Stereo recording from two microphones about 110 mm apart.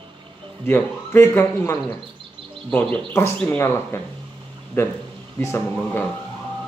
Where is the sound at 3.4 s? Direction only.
20° left (ahead or behind).